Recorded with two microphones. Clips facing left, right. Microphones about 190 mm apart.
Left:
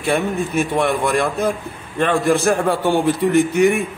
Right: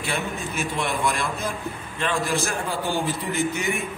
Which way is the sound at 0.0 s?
60° left (ahead or behind).